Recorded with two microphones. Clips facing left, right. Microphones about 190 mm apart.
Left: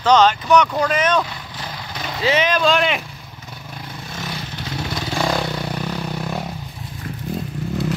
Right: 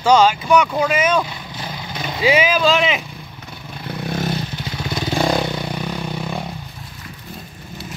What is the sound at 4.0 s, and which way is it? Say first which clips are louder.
Vehicle: right 10 dB; 55° right (ahead or behind).